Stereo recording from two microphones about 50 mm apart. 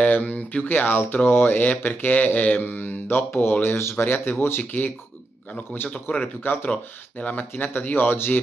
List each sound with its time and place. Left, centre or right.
0.0 s speech: left
2.6 s speech: left
4.0 s speech: left
6.1 s speech: left